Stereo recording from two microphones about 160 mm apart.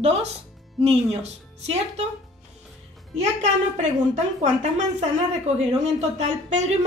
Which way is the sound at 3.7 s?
50° right (ahead or behind).